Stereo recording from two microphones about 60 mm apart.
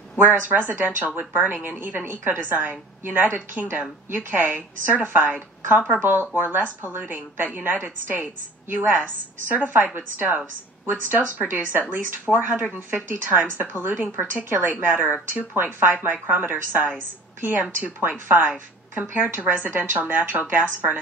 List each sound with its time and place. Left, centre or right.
0.2 s a woman's voice: right